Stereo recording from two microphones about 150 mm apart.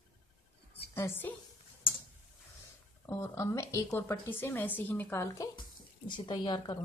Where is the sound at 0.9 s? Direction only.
15° left (ahead or behind).